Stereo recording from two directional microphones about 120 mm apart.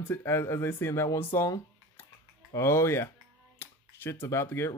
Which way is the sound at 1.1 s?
20° left (ahead or behind).